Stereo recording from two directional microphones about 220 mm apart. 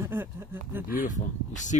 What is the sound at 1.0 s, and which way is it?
Speech, 35° left (ahead or behind).